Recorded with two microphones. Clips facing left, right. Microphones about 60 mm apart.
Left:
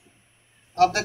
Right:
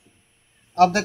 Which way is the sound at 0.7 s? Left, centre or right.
Right.